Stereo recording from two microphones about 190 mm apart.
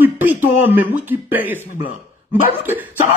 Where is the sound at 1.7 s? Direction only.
45° left (ahead or behind).